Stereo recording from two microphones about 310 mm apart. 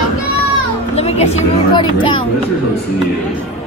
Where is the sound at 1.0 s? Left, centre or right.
Centre.